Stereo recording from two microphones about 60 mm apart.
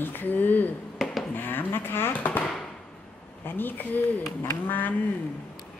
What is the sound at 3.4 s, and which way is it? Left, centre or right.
Speech, left.